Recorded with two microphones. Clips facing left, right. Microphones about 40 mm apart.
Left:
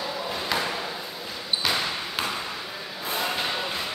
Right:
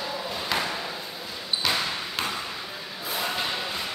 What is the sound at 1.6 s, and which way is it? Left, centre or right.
Basketball bounce, centre.